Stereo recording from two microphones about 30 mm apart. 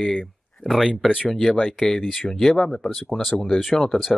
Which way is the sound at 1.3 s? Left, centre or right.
Centre.